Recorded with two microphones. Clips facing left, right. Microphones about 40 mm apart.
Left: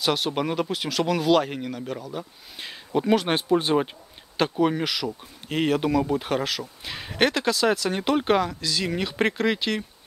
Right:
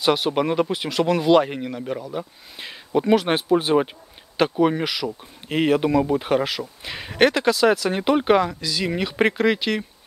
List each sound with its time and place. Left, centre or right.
0.0 s speech: centre
2.5 s speech: centre
5.5 s speech: right
5.8 s speech: centre
7.2 s speech: right